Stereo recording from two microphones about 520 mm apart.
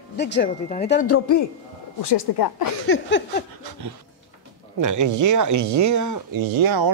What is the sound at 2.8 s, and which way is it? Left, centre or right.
Speech, left.